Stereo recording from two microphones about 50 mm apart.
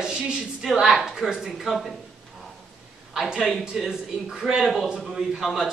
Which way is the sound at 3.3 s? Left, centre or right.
Centre.